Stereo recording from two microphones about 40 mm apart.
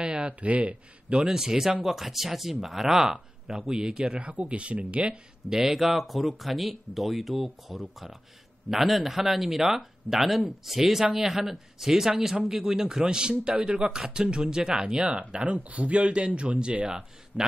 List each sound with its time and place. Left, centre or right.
0.0 s speech: right
1.2 s speech: centre
4.2 s speech: right
5.5 s speech: centre; by 13.9 s right
13.9 s speech: centre; by 17.0 s right
17.3 s a man's voice: left